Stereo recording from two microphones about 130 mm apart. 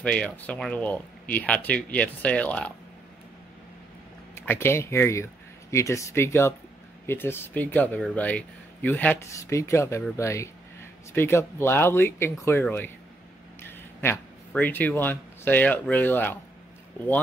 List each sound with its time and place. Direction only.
0.0 s speech: 10° left (ahead or behind)
4.4 s speech: 20° left (ahead or behind)
9.4 s speech: 25° left (ahead or behind)